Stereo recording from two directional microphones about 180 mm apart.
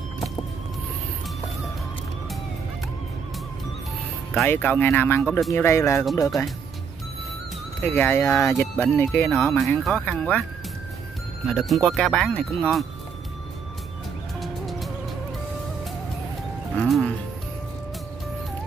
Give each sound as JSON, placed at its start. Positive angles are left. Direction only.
{"t": 4.3, "sound": "speech", "side_deg": 10}
{"t": 7.8, "sound": "speech", "side_deg": 10}
{"t": 11.4, "sound": "speech", "side_deg": 0}
{"t": 14.4, "sound": "music", "side_deg": 0}
{"t": 16.7, "sound": "speech", "side_deg": 0}